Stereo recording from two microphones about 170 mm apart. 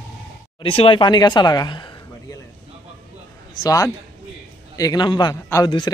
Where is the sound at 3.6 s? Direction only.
20° left (ahead or behind).